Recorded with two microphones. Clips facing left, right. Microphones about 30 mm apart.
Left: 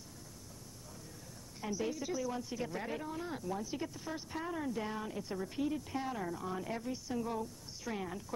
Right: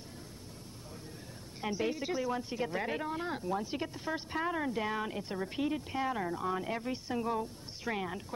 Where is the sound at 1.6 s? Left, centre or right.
Right.